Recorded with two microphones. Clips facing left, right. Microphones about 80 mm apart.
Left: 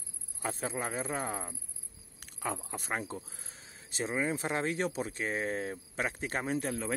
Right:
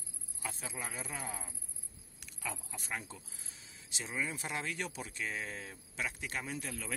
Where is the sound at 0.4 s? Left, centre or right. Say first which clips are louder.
Left 8 dB; left.